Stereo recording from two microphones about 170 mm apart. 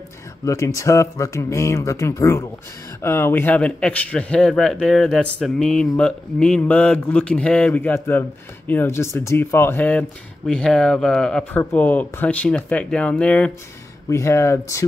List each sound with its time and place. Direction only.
0.5 s a man's voice: 20° left (ahead or behind)